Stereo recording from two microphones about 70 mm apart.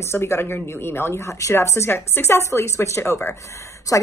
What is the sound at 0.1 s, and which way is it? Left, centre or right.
A woman's voice, left.